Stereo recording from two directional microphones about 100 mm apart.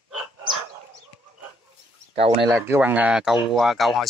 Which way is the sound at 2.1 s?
90° right.